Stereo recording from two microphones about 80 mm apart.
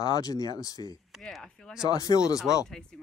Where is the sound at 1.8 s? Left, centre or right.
Left.